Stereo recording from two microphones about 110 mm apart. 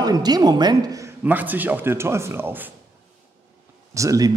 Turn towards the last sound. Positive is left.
turn(degrees=-30)  # may be behind; listen again after turning